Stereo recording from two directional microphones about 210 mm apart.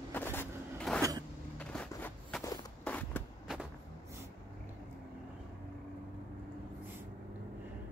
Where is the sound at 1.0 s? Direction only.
15° right (ahead or behind).